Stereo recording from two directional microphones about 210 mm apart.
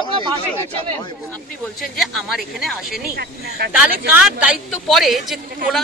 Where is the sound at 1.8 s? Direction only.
Centre (ahead or behind).